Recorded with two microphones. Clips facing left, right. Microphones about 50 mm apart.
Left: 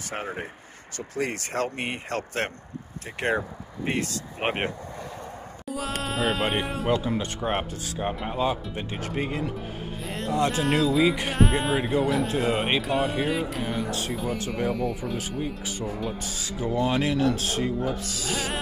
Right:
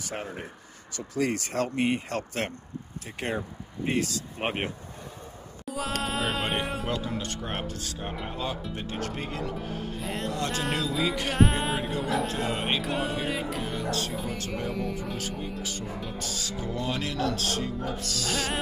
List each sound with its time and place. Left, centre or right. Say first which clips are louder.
0.0 s speech: left 3 dB; left
4.0 s speech: left 2 dB; left
5.7 s music: left 1 dB; centre
6.0 s speech: left 6 dB; centre
6.9 s speech: left 6 dB; centre
9.9 s music: left 2 dB; centre
10.3 s speech: left 10 dB; centre
10.6 s speech: left 7 dB; centre
11.1 s speech: left 4 dB; centre
11.3 s speech: left 2 dB; centre
14.1 s speech: left 4 dB; centre
15.6 s speech: left 3 dB; centre
15.9 s speech: left 5 dB; centre
16.2 s speech: left 2 dB; centre